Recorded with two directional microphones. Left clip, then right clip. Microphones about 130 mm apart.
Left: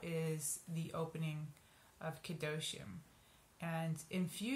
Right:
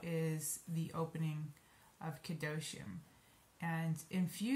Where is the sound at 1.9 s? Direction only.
15° left (ahead or behind).